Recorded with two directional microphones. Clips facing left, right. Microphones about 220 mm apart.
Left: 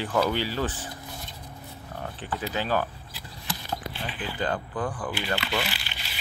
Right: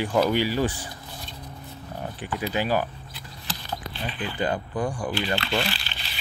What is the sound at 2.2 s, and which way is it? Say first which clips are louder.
Speech: right 4 dB; 10° right (ahead or behind).